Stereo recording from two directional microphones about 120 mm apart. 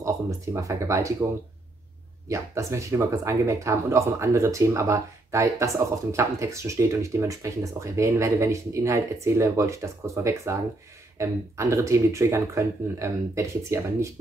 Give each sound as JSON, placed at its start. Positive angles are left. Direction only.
{"t": 0.0, "sound": "speech", "side_deg": -25}
{"t": 2.2, "sound": "speech", "side_deg": -25}